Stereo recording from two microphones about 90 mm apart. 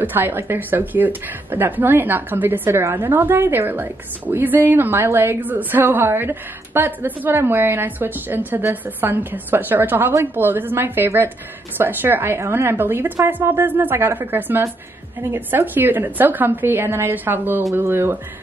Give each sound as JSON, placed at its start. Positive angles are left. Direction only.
{"t": 0.0, "sound": "speech", "side_deg": -20}